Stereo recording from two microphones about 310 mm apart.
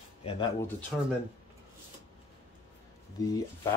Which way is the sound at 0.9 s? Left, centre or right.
Centre.